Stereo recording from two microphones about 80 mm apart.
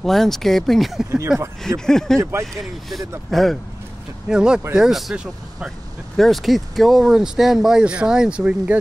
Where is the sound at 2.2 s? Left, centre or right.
Right.